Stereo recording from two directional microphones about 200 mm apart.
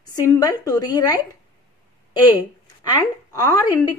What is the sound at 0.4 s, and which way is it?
Speech, 20° left (ahead or behind).